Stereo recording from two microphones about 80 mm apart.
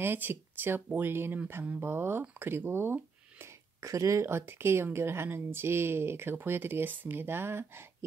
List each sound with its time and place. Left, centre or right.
0.0 s a woman's voice: right
3.8 s a woman's voice: right